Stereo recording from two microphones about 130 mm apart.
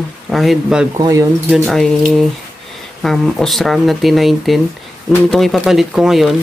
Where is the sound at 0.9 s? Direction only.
25° right (ahead or behind).